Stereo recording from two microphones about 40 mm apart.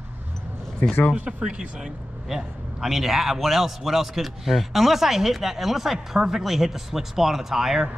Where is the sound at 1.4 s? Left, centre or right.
Right.